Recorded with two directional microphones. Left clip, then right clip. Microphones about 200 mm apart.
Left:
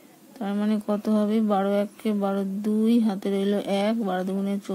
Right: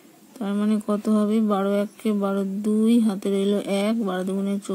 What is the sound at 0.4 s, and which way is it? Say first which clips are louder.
Speech: right 2 dB; 15° right (ahead or behind).